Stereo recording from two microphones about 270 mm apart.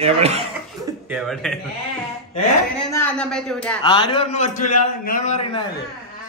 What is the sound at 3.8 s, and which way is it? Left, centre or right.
A man's voice, centre.